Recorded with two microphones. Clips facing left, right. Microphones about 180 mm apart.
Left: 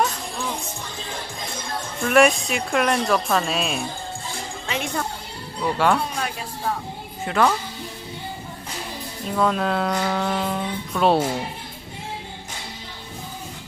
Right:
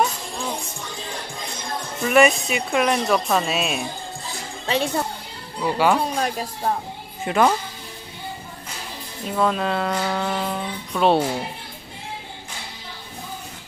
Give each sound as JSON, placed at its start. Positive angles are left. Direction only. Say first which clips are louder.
{"t": 2.0, "sound": "speech", "louder": "even", "side_deg": -5}
{"t": 4.6, "sound": "speech", "louder": "right 5 dB", "side_deg": -30}
{"t": 5.6, "sound": "speech", "louder": "right 1 dB", "side_deg": -5}
{"t": 6.1, "sound": "speech", "louder": "right 4 dB", "side_deg": -40}
{"t": 7.2, "sound": "a woman's voice", "louder": "right 2 dB", "side_deg": -15}
{"t": 9.3, "sound": "speech", "louder": "even", "side_deg": 0}